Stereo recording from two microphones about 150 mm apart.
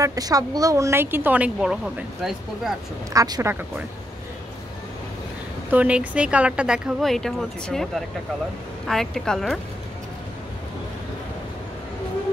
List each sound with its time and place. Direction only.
0.0 s speech: 25° right (ahead or behind); by 2.7 s centre (ahead or behind)
3.1 s speech: 25° right (ahead or behind)
5.7 s speech: 10° right (ahead or behind)